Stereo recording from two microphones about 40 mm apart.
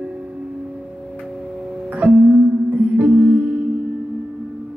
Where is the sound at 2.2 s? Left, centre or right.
Right.